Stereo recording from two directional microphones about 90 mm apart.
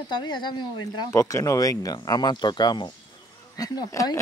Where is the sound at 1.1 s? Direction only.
40° left (ahead or behind).